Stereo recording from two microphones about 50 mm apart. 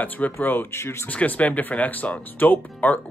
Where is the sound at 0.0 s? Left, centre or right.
Left.